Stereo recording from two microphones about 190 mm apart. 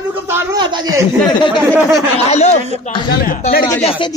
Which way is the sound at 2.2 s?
35° left (ahead or behind).